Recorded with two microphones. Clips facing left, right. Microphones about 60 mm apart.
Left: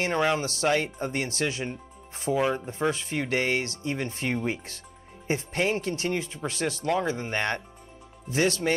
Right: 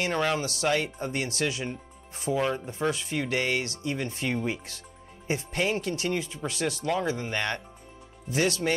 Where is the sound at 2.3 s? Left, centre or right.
Centre.